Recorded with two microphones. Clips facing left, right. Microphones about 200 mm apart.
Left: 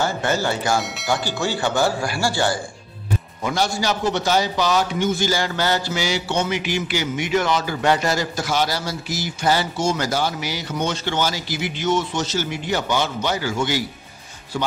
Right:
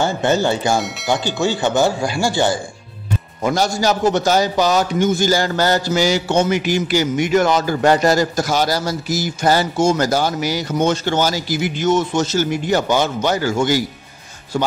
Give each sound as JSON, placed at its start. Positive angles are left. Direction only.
{"t": 0.0, "sound": "speech", "side_deg": -25}
{"t": 0.7, "sound": "speech", "side_deg": 0}
{"t": 1.0, "sound": "speech", "side_deg": -20}
{"t": 3.4, "sound": "a man's voice", "side_deg": -45}